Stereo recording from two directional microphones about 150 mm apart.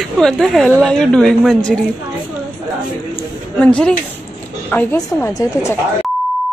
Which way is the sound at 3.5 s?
10° left (ahead or behind).